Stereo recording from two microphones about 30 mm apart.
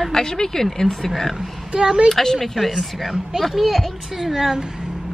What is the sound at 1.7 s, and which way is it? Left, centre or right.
Speech, right.